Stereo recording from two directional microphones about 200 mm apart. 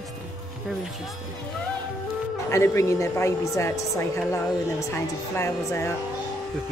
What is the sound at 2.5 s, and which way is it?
A man's voice, 15° left (ahead or behind).